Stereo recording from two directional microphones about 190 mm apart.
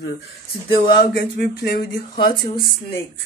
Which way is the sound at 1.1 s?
55° left (ahead or behind).